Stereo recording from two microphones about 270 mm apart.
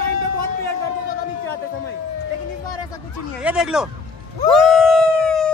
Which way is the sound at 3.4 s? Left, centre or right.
Centre.